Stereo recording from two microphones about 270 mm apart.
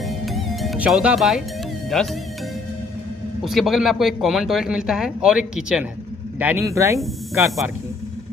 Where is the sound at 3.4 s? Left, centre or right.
Centre.